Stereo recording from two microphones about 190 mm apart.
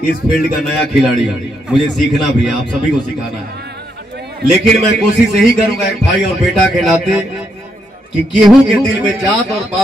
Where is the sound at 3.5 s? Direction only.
60° right (ahead or behind).